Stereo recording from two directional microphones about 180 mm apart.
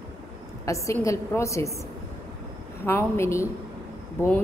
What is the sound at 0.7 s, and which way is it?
A woman's voice, 15° left (ahead or behind).